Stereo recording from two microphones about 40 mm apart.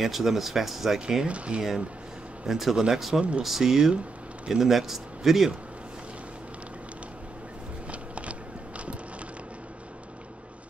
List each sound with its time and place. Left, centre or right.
0.0 s speech: centre
1.2 s speech: right
2.4 s speech: centre
3.2 s speech: right
3.4 s speech: centre
7.9 s a sound: right